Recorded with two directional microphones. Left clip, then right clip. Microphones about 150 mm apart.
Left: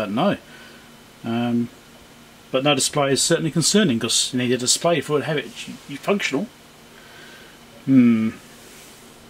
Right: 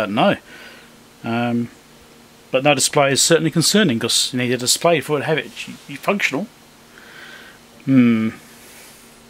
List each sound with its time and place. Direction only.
0.0 s speech: 25° right (ahead or behind)
7.9 s speech: 30° right (ahead or behind)